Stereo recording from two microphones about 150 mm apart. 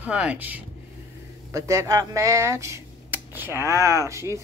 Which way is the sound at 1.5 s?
20° right (ahead or behind).